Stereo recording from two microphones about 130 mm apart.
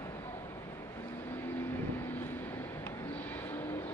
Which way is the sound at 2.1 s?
15° left (ahead or behind).